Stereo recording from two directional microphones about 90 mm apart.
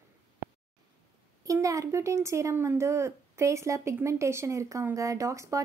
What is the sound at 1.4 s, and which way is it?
Speech, 40° right (ahead or behind).